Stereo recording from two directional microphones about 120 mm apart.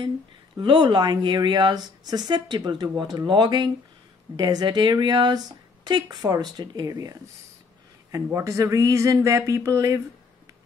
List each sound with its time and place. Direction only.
0.6 s speech: 40° right (ahead or behind)